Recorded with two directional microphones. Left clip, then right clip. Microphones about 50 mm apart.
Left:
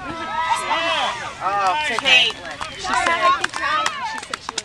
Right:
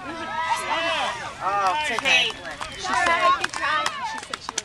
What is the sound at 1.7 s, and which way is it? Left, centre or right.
Speech, centre.